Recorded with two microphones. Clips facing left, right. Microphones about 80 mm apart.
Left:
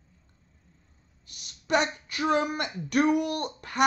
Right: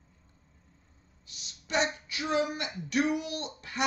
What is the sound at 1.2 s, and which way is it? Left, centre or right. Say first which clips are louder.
Speech: left 8 dB; left.